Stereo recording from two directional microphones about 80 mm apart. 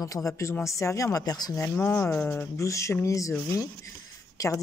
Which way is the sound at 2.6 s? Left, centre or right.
Left.